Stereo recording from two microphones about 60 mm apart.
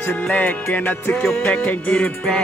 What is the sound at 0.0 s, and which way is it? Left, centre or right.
Music, left.